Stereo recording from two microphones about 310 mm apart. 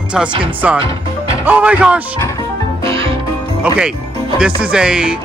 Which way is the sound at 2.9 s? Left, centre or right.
Centre.